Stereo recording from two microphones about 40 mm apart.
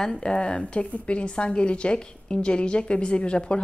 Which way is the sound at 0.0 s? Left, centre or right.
Centre.